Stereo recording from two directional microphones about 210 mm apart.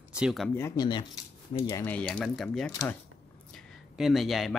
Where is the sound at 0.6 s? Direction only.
20° left (ahead or behind).